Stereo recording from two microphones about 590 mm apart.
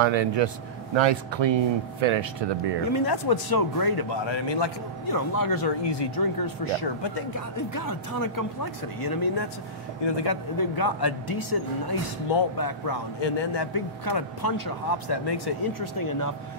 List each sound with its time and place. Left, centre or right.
0.0 s speech: right
3.1 s a man's voice: left